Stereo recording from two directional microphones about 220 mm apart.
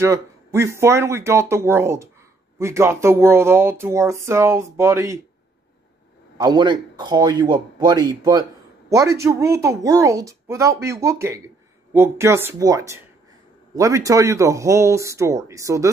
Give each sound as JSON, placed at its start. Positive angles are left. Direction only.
{"t": 0.0, "sound": "speech", "side_deg": -15}
{"t": 6.3, "sound": "a man's voice", "side_deg": -20}